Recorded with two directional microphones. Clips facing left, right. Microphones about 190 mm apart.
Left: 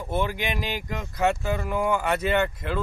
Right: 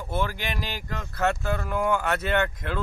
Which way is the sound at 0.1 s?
15° left (ahead or behind).